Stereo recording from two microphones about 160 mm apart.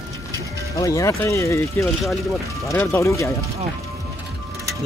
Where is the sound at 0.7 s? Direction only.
20° left (ahead or behind).